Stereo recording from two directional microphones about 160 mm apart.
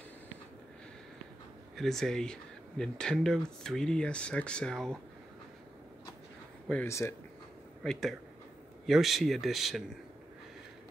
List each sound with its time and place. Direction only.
1.8 s speech: centre (ahead or behind)
6.7 s speech: 15° left (ahead or behind)
7.8 s speech: centre (ahead or behind)